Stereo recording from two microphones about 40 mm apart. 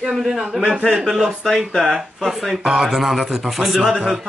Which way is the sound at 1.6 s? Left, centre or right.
Centre.